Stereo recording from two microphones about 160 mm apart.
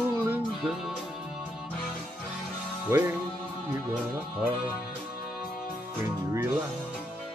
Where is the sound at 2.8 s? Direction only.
15° right (ahead or behind).